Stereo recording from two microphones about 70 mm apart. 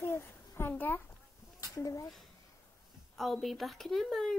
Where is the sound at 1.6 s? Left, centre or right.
Left.